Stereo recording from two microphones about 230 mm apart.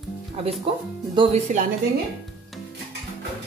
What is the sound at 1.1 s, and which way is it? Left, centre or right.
Speech, right.